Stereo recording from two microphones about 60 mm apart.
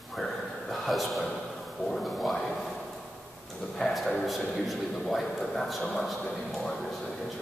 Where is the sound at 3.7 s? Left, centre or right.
Centre.